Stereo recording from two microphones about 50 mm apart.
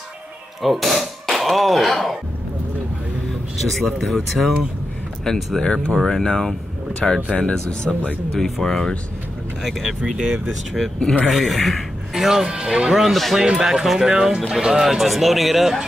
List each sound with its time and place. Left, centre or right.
0.6 s speech: centre
3.5 s speech: centre
8.4 s speech: centre
9.6 s speech: centre
11.2 s speech: centre
13.0 s speech: centre
13.4 s speech: centre